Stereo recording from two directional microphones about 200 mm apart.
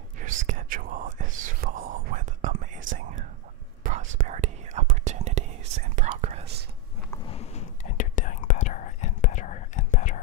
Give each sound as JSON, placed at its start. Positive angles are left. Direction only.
{"t": 0.2, "sound": "whispering", "side_deg": -40}
{"t": 7.2, "sound": "whispering", "side_deg": 30}